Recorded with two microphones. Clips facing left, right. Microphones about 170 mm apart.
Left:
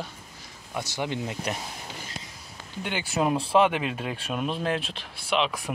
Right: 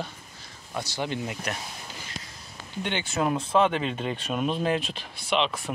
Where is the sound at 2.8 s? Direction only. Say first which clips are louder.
Left 1 dB; 5° left (ahead or behind).